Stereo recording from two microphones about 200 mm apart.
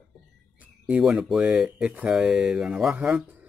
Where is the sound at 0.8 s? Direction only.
5° right (ahead or behind).